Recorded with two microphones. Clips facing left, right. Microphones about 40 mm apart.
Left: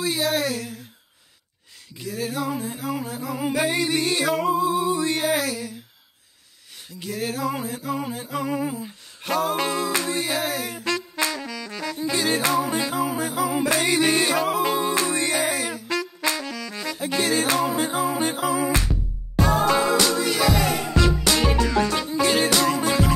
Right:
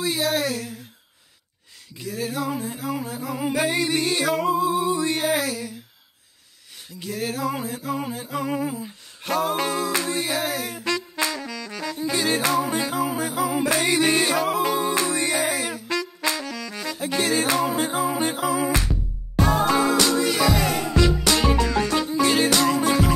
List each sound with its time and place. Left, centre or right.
0.0 s music: centre
2.0 s music: centre
7.1 s music: centre
9.7 s music: left
9.9 s music: centre
16.3 s saxophone: centre
16.6 s music: centre